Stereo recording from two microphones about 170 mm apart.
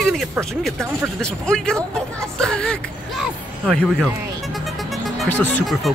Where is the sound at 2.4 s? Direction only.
5° left (ahead or behind).